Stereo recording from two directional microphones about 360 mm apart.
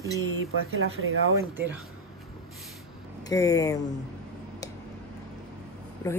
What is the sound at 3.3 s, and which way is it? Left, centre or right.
Speech, centre.